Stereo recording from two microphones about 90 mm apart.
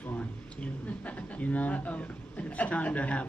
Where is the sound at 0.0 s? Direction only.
15° left (ahead or behind).